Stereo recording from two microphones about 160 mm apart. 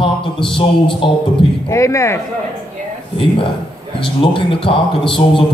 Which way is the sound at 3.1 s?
35° left (ahead or behind).